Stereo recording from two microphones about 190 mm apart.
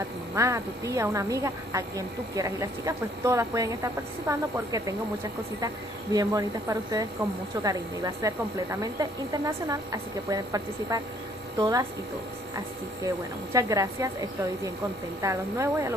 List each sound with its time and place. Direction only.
0.4 s a woman's voice: 15° right (ahead or behind)
6.1 s a woman's voice: 20° right (ahead or behind)